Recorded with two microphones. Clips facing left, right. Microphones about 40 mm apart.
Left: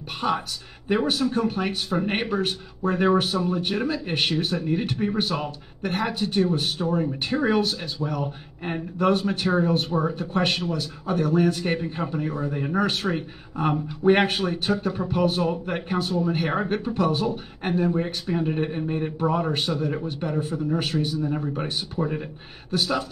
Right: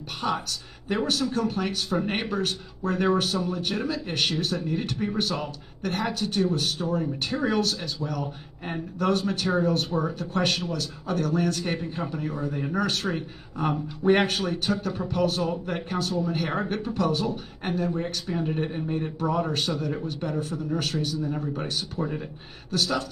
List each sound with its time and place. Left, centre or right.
0.2 s a man's voice: left